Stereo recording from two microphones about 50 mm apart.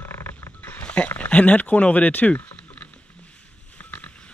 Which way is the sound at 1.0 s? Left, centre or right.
Left.